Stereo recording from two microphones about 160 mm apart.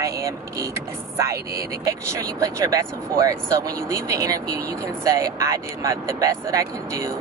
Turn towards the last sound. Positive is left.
turn(degrees=-20)  # may be behind; listen again after turning